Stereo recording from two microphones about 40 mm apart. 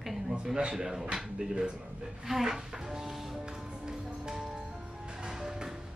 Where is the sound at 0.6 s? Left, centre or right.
Right.